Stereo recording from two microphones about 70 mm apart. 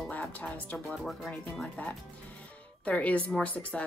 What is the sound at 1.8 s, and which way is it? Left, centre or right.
Speech, left.